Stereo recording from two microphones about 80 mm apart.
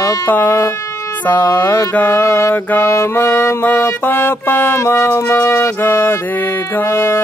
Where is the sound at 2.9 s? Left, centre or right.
Left.